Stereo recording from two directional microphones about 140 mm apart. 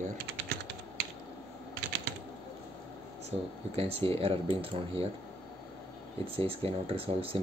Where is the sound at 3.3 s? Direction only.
45° right (ahead or behind).